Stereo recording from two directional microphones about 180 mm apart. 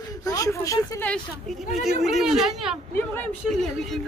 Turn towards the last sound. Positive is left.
turn(degrees=0)  # may be behind; listen again after turning